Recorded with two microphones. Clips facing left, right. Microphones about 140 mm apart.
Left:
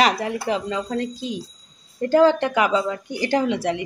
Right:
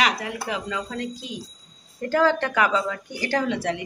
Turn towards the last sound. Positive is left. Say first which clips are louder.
# left 3 dB
turn(degrees=15)  # may be behind; listen again after turning